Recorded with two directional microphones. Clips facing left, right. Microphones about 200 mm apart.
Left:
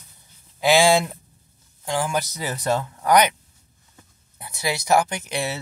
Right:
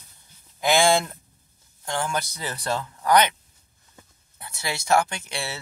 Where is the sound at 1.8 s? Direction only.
10° left (ahead or behind).